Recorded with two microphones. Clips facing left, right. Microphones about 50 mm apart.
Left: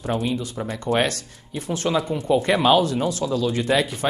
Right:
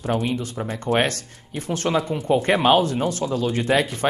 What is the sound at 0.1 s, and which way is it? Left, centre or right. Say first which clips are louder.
Speech: right 1 dB; right.